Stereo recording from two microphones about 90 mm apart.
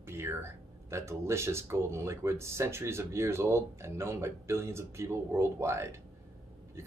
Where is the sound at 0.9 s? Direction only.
30° right (ahead or behind).